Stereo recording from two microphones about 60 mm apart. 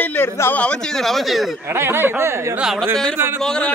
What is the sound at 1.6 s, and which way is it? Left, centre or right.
A man's voice, right.